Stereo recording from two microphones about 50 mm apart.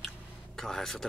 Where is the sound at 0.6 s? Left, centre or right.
Centre.